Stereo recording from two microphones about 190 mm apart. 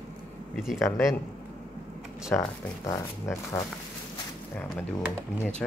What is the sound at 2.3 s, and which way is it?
Speech, 15° left (ahead or behind).